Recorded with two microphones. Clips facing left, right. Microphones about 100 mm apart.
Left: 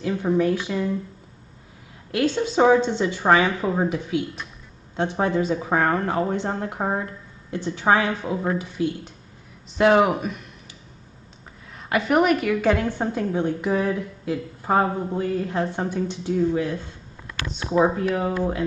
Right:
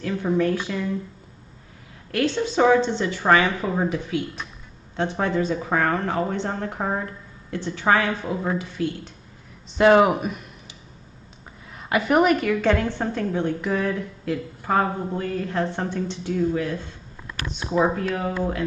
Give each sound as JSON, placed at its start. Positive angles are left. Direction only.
{"t": 0.0, "sound": "a woman's voice", "side_deg": 15}
{"t": 2.0, "sound": "a woman's voice", "side_deg": 15}
{"t": 9.7, "sound": "speech", "side_deg": 0}
{"t": 11.7, "sound": "a woman's voice", "side_deg": -5}
{"t": 17.7, "sound": "a woman's voice", "side_deg": 15}